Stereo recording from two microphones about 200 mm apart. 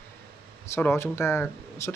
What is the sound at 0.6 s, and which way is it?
Speech, 10° left (ahead or behind).